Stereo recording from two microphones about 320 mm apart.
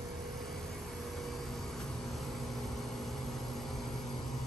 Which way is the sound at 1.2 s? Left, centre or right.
Centre.